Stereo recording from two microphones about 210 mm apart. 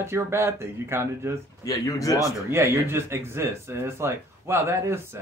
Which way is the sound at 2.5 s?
10° right (ahead or behind).